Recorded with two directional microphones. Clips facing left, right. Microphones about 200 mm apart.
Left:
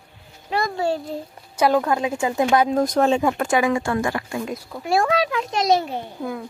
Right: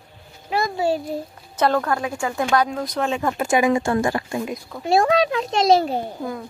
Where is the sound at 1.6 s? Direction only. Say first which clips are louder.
Left 2 dB; 15° left (ahead or behind).